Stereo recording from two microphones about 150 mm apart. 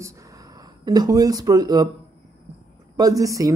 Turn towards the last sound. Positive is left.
turn(degrees=-20)  # may be behind; listen again after turning